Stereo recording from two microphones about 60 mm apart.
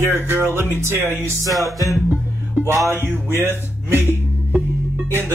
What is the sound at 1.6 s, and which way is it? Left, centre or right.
Music, left.